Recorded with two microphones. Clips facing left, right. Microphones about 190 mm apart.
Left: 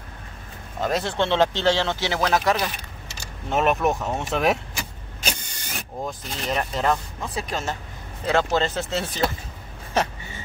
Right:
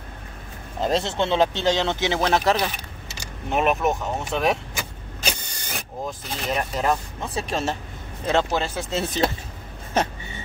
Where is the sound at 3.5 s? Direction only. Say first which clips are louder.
Even; 5° right (ahead or behind).